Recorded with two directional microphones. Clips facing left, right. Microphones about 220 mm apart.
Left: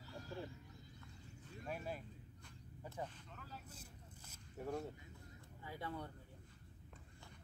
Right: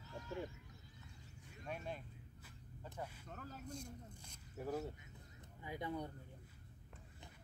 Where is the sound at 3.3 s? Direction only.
45° right (ahead or behind).